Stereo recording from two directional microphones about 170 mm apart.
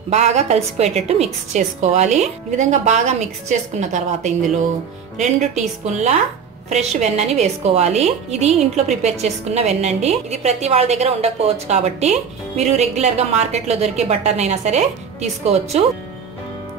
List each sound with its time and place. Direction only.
0.1 s a woman's voice: 40° right (ahead or behind)